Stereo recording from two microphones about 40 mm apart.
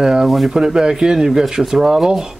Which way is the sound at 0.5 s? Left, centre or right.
Centre.